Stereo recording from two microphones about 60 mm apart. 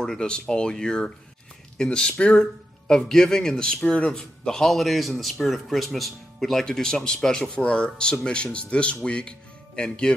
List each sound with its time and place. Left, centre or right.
0.0 s a man's voice: centre